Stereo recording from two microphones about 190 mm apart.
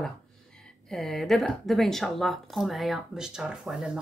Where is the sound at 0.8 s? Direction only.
Centre (ahead or behind).